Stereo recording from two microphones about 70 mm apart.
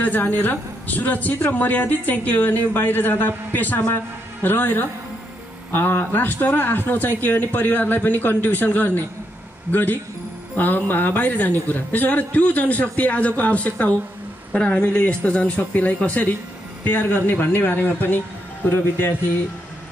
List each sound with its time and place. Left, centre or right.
0.0 s a man's voice: left